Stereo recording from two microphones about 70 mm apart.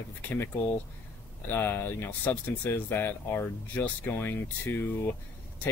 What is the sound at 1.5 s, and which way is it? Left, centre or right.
Speech, left.